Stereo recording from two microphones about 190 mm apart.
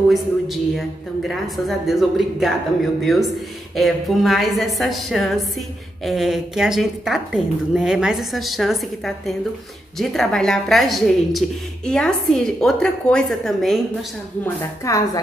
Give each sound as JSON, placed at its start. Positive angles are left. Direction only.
{"t": 0.1, "sound": "a woman's voice", "side_deg": 0}
{"t": 14.9, "sound": "a woman's voice", "side_deg": 15}